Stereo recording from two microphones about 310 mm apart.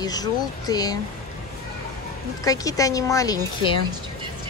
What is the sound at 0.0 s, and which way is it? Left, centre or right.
Speech, centre.